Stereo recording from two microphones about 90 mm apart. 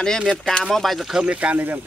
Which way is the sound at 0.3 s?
5° left (ahead or behind).